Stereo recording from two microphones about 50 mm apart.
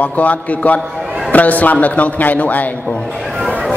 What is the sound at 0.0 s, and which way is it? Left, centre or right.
Speech, left.